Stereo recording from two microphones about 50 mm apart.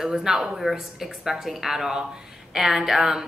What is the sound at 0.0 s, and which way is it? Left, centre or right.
A woman's voice, centre.